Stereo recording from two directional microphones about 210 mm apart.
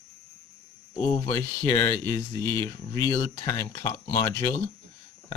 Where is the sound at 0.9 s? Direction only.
25° left (ahead or behind).